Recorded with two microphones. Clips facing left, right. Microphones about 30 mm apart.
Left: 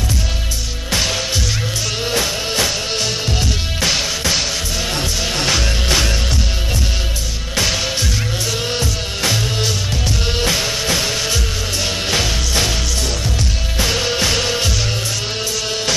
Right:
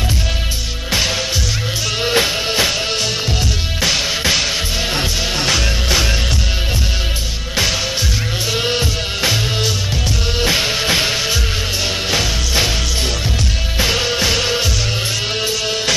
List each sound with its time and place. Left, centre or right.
2.0 s music: right
5.4 s music: centre
8.5 s music: right
13.7 s music: centre